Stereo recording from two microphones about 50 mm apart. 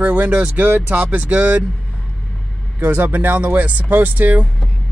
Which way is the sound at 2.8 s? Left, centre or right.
Right.